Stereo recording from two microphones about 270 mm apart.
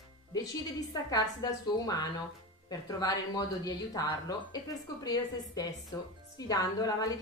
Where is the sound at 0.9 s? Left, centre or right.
Centre.